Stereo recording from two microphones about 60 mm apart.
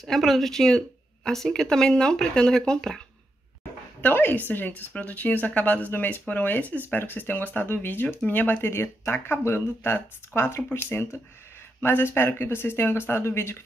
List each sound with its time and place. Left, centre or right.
0.0 s speech: centre
4.0 s a woman's voice: left